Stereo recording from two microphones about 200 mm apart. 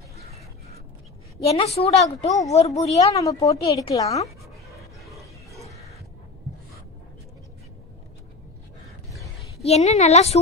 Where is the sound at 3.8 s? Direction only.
15° left (ahead or behind).